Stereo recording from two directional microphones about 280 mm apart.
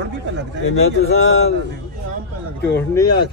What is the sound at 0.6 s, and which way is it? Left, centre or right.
Speech, left.